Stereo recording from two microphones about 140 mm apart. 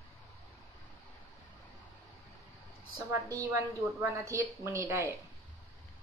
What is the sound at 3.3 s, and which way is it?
A woman's voice, 20° right (ahead or behind).